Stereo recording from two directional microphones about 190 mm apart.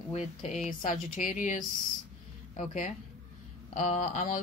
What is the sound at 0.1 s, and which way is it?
Speech, 35° left (ahead or behind).